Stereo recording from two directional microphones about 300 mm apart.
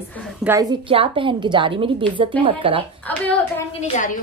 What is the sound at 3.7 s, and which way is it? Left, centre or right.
Speech, left.